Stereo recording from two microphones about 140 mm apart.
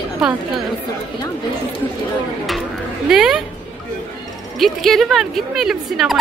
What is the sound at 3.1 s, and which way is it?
Speech, 5° right (ahead or behind).